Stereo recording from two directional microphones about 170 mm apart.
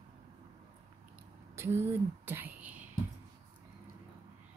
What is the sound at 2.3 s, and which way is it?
Whispering, 10° right (ahead or behind).